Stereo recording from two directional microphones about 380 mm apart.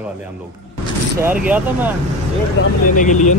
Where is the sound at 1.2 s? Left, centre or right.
Centre.